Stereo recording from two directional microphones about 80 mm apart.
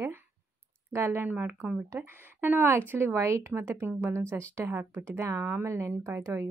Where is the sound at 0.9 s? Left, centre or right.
Right.